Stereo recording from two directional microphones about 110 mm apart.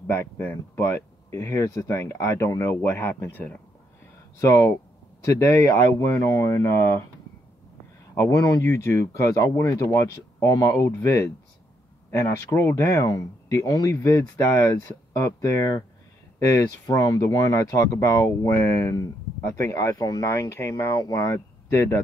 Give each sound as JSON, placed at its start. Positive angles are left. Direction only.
{"t": 0.0, "sound": "speech", "side_deg": 20}
{"t": 4.4, "sound": "speech", "side_deg": 25}
{"t": 8.1, "sound": "speech", "side_deg": 30}
{"t": 20.2, "sound": "speech", "side_deg": 25}